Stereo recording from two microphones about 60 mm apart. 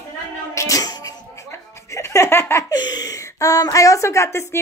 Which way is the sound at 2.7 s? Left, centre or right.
Left.